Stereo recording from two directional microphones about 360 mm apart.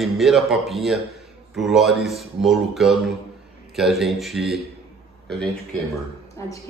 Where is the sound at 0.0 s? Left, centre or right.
Centre.